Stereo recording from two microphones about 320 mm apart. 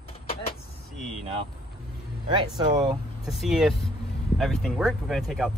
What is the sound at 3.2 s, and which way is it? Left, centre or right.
Speech, centre.